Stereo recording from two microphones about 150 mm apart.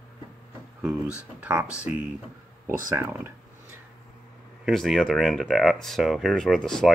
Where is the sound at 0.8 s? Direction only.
10° right (ahead or behind).